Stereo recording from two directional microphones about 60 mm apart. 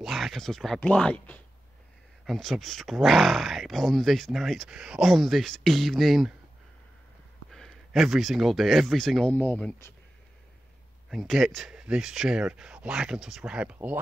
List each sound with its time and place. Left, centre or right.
0.0 s speech: centre
0.7 s speech: left
2.2 s speech: centre
7.5 s a sound: centre
8.0 s speech: centre
9.3 s speech: left
11.1 s speech: centre
11.7 s speech: centre